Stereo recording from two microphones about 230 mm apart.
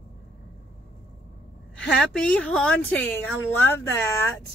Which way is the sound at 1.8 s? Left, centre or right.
Centre.